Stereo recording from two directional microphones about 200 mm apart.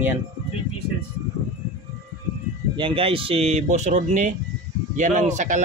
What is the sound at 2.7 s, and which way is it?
Speech, 25° right (ahead or behind).